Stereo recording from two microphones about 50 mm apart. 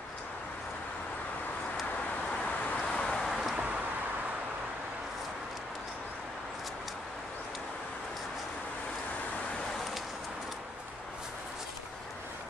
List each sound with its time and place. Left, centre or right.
2.3 s vehicle: left
3.3 s vehicle: centre